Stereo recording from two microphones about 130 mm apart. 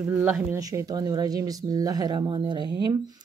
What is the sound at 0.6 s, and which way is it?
Speech, 30° right (ahead or behind).